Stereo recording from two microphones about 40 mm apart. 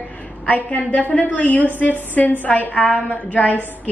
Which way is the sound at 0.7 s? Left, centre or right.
Left.